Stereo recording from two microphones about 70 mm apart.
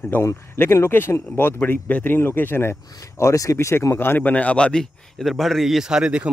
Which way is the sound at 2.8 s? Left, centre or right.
Left.